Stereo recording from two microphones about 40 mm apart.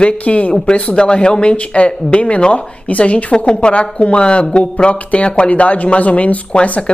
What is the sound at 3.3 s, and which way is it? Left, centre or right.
A woman's voice, left.